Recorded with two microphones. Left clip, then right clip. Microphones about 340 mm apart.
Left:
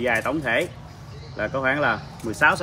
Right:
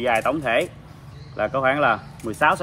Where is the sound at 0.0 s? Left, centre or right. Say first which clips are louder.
Right 2 dB; centre.